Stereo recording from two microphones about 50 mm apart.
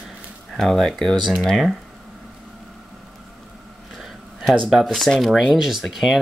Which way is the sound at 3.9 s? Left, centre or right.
Centre.